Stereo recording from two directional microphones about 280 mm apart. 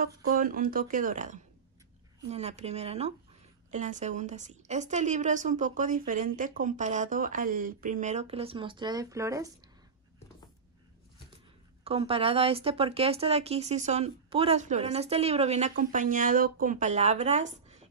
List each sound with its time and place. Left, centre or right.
0.3 s speech: right; by 9.5 s centre
11.8 s speech: right